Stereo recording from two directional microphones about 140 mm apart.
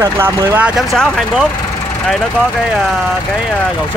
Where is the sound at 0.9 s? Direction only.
Centre (ahead or behind).